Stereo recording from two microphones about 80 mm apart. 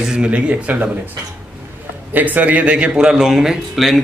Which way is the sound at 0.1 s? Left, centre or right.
Centre.